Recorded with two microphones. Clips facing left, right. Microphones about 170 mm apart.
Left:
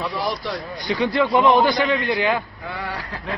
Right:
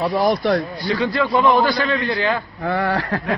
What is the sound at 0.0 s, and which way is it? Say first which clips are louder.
Speech: right 8 dB; 50° right (ahead or behind).